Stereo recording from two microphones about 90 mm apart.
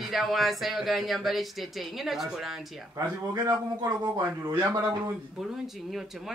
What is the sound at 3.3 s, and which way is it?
A man's voice, 45° right (ahead or behind).